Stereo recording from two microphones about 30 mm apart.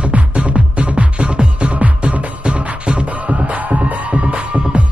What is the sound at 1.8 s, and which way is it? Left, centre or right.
Music, right.